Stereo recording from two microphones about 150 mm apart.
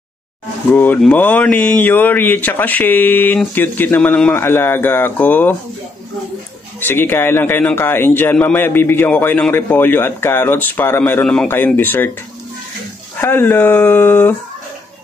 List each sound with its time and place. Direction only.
0.7 s a man's voice: 15° left (ahead or behind)
6.9 s a man's voice: 15° left (ahead or behind)
13.2 s a man's voice: 15° left (ahead or behind)